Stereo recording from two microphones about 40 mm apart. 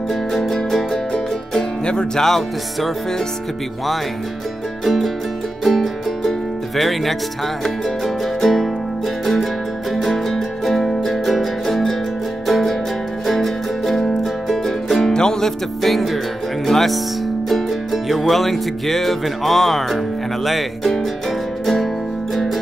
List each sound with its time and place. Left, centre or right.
0.1 s music: centre
1.9 s music: left
2.2 s music: centre
4.8 s music: centre
15.0 s music: centre
15.8 s music: centre
20.4 s speech: centre
22.3 s music: centre